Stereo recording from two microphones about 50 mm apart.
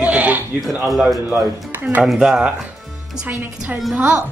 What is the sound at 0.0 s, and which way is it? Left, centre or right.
Bleat, right.